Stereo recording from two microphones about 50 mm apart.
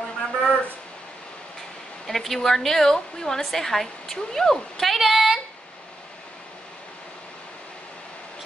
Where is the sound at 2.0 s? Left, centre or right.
Centre.